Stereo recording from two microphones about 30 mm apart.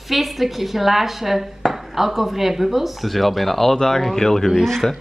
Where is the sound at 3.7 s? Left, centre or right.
Centre.